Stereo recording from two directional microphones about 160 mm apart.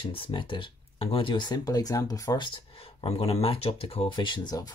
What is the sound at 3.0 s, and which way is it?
Speech, 40° left (ahead or behind).